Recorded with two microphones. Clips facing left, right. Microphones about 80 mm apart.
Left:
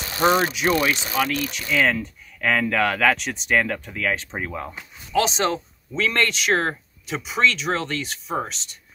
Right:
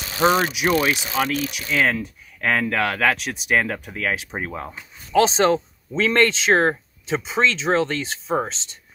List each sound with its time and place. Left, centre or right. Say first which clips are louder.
0.3 s speech: left 3 dB; centre
0.8 s speech: right 1 dB; centre
1.5 s speech: even; centre
5.1 s speech: right 5 dB; right